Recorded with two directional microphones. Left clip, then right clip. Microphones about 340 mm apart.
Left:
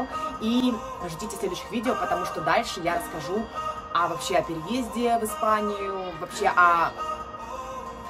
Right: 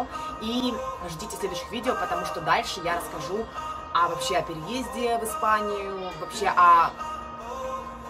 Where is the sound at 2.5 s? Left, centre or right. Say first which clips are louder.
Even; centre.